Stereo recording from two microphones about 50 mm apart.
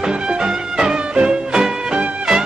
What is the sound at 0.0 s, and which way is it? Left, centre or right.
Music, centre.